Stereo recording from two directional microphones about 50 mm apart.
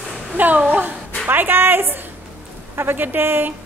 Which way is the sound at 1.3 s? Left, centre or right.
Right.